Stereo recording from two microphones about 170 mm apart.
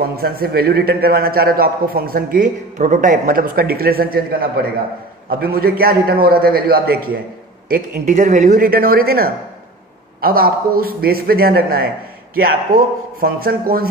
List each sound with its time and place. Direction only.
0.0 s a man's voice: 60° right (ahead or behind)